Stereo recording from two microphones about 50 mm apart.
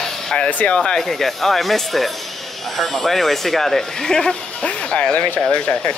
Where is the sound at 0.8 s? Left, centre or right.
Centre.